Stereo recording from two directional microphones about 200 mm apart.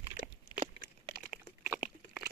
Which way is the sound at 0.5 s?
20° left (ahead or behind).